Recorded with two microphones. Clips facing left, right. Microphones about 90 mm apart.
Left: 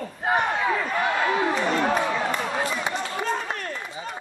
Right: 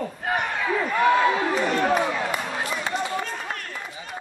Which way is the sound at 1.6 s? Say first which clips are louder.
Even; 25° left (ahead or behind).